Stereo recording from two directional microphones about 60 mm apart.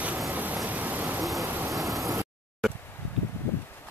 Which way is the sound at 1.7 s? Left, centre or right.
Centre.